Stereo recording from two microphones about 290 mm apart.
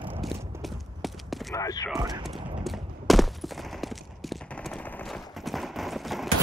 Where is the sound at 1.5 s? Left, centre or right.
Centre.